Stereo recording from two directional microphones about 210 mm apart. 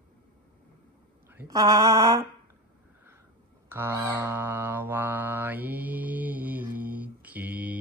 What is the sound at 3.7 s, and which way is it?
Mantra, 10° right (ahead or behind).